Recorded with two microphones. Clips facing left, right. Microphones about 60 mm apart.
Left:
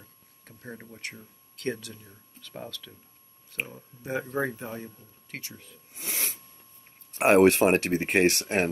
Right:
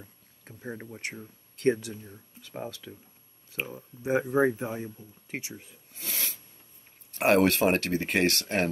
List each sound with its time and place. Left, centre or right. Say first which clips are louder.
0.0 s a sound: right 3 dB; centre
1.6 s speech: right 7 dB; right
5.9 s snort: left 1 dB; left
7.2 s speech: left 4 dB; left